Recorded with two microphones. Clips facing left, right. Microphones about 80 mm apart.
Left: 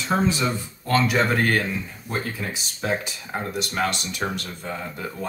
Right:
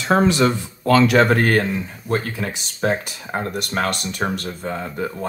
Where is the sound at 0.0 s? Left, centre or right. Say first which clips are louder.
Right 6 dB; right.